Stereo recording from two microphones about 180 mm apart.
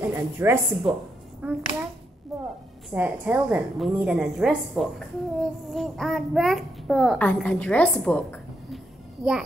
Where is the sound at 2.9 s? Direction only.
10° right (ahead or behind); by 8.2 s 10° left (ahead or behind).